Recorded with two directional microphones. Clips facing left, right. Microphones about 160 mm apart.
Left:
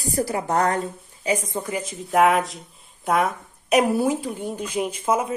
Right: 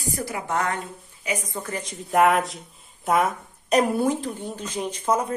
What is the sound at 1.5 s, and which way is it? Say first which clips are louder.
Speech: left 4 dB; 15° left (ahead or behind).